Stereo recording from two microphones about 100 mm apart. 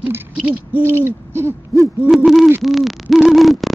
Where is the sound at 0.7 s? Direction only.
20° right (ahead or behind).